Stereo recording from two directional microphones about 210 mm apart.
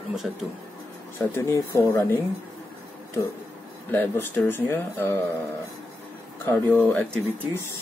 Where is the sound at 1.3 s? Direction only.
10° left (ahead or behind).